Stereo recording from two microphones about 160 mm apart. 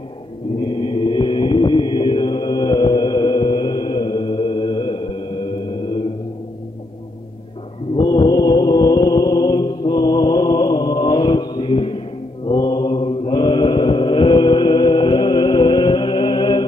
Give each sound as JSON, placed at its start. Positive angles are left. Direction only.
{"t": 0.6, "sound": "mantra", "side_deg": 30}
{"t": 7.9, "sound": "mantra", "side_deg": 30}